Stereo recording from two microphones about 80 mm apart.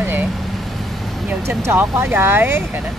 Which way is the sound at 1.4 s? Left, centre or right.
Right.